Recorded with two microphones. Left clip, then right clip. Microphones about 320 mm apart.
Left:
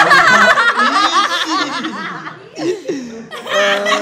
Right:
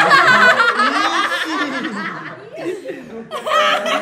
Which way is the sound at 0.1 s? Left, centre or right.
Centre.